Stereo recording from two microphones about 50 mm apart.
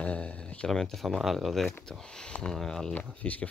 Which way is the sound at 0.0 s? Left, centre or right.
Left.